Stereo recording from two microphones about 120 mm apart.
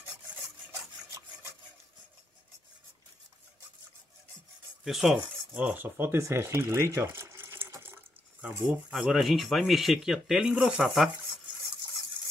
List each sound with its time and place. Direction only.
0.7 s rub: 25° right (ahead or behind)
4.8 s speech: centre (ahead or behind)
8.6 s speech: centre (ahead or behind)